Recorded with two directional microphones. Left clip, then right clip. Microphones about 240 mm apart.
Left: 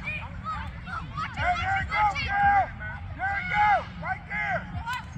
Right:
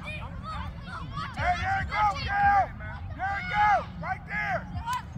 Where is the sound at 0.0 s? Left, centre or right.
Right.